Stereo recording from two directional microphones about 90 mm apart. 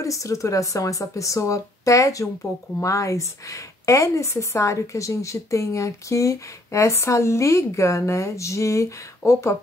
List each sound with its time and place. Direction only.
0.0 s speech: 35° left (ahead or behind)